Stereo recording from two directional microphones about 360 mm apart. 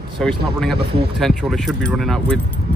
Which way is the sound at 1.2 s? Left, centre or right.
Centre.